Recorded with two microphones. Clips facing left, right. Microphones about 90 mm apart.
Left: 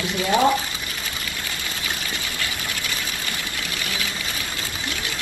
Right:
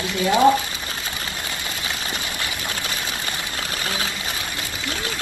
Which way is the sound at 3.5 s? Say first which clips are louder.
Right 2 dB; 35° right (ahead or behind).